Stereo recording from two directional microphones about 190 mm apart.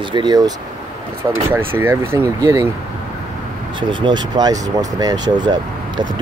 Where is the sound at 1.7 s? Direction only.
10° right (ahead or behind).